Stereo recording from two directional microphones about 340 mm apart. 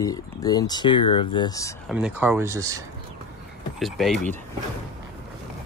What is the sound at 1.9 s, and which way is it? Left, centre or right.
Speech, centre.